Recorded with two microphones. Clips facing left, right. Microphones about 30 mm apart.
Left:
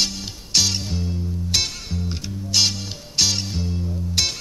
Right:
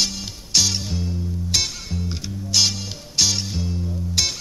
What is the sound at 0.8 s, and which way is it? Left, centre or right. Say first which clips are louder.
Music: even; centre.